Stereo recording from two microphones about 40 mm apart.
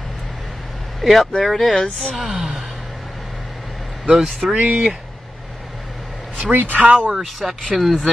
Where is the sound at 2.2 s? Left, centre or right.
Centre.